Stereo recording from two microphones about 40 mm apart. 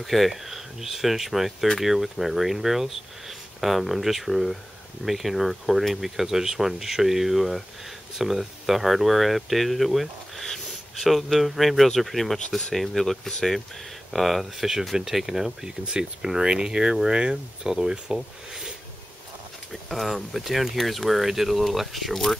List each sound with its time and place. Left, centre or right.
0.0 s speech: centre
15.8 s speech: centre
19.7 s speech: centre